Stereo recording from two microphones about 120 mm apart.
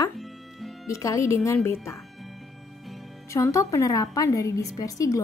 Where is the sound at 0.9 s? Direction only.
25° left (ahead or behind).